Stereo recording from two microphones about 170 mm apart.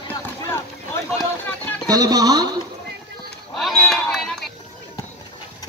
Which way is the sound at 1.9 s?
20° right (ahead or behind).